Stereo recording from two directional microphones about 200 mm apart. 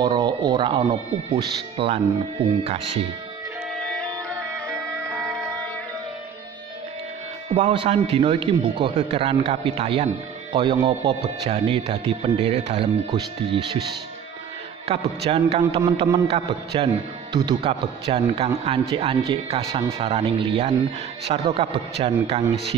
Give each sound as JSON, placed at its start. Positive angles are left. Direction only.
{"t": 0.0, "sound": "a man's voice", "side_deg": -20}
{"t": 4.6, "sound": "music", "side_deg": -10}
{"t": 5.2, "sound": "music", "side_deg": 0}
{"t": 7.4, "sound": "a man's voice", "side_deg": -25}
{"t": 15.0, "sound": "a man's voice", "side_deg": -30}